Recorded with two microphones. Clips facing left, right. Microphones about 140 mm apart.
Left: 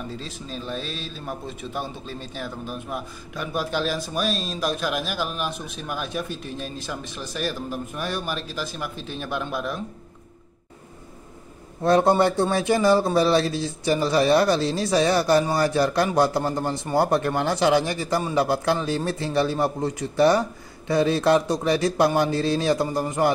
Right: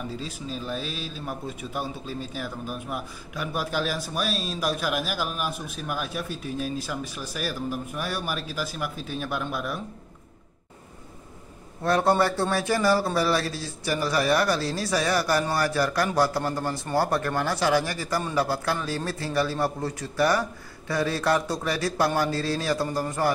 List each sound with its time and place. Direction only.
0.2 s a man's voice: 10° right (ahead or behind)
11.8 s a man's voice: 20° left (ahead or behind)